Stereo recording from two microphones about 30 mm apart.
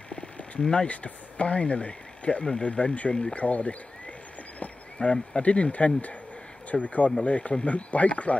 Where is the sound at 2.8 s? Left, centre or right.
Left.